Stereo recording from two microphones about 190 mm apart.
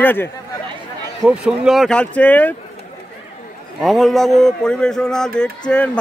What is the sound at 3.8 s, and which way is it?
Speech, centre (ahead or behind).